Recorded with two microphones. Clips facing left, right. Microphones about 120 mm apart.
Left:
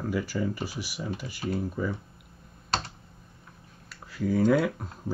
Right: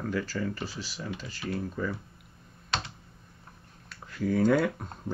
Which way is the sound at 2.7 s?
40° left (ahead or behind).